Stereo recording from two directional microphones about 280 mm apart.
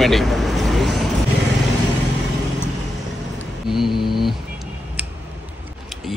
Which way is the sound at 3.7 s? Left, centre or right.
Centre.